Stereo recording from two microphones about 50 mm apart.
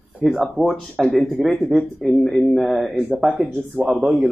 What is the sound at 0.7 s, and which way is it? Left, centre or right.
Speech, centre.